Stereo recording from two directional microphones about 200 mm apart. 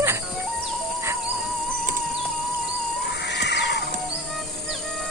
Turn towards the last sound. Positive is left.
turn(degrees=60)  # may be behind; listen again after turning